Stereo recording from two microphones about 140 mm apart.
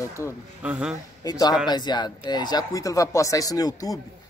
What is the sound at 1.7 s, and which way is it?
Speech, 30° left (ahead or behind).